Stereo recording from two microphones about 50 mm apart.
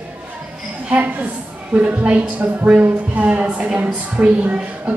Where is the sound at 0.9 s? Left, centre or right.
Right.